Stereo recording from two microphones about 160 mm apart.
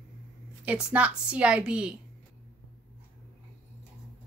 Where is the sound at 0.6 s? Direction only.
10° right (ahead or behind).